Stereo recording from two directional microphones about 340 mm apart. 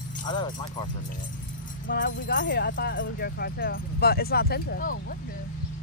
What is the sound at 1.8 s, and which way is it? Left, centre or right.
Speech, left.